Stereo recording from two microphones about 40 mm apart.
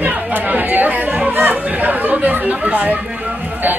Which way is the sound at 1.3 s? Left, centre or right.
Right.